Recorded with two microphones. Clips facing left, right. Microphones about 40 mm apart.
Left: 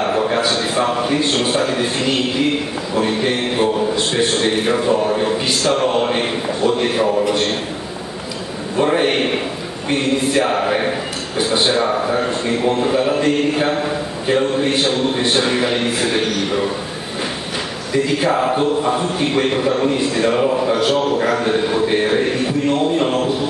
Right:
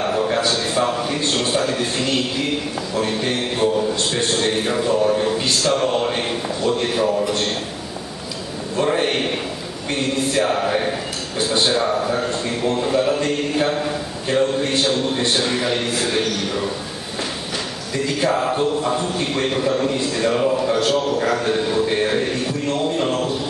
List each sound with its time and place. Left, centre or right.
0.0 s a sound: centre
2.9 s a man's voice: centre
8.7 s a man's voice: centre
17.9 s a man's voice: centre